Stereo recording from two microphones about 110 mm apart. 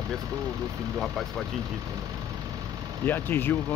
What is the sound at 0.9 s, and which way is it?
Speech, 5° left (ahead or behind).